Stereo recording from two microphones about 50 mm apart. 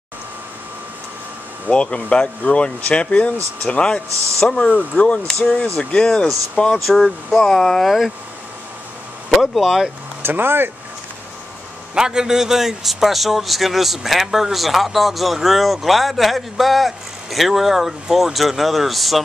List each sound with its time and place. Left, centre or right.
1.7 s speech: left
4.6 s speech: left
6.8 s a man's voice: centre
9.3 s a man's voice: centre
10.2 s speech: right
11.9 s a man's voice: centre